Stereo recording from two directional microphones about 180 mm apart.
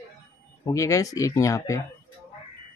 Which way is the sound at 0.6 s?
15° left (ahead or behind).